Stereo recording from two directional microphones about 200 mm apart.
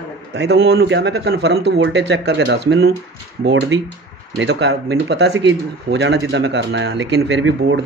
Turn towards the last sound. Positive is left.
turn(degrees=-65)  # may be behind; listen again after turning